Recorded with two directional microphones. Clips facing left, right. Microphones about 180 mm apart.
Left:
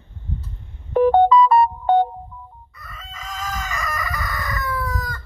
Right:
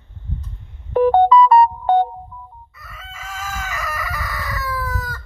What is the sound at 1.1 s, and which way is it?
Music, 70° right (ahead or behind).